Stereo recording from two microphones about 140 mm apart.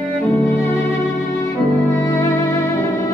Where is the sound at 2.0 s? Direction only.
15° left (ahead or behind).